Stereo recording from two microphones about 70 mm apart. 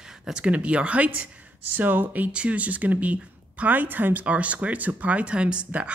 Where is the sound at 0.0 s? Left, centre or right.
Centre.